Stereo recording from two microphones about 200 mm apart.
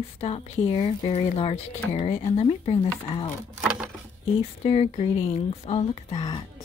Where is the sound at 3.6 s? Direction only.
5° right (ahead or behind).